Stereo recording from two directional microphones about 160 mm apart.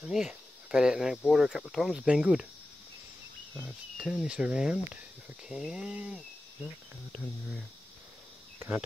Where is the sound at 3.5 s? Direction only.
5° right (ahead or behind).